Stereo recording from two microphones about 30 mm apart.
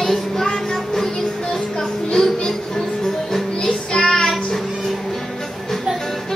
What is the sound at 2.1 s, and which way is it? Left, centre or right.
Music, centre.